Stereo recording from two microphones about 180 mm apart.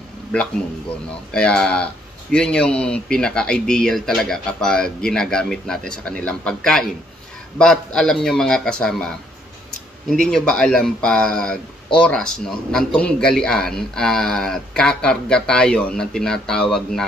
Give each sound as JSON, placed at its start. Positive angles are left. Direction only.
{"t": 1.3, "sound": "a man's voice", "side_deg": 5}